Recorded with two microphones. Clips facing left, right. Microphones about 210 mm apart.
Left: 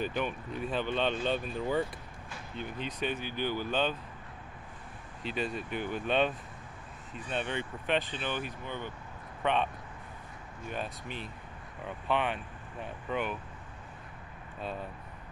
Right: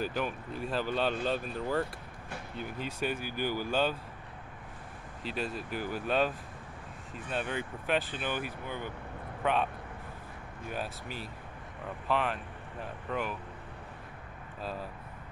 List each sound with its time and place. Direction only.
0.0 s speech: 5° right (ahead or behind)
5.2 s speech: centre (ahead or behind)
10.7 s speech: 5° right (ahead or behind)
14.6 s speech: centre (ahead or behind)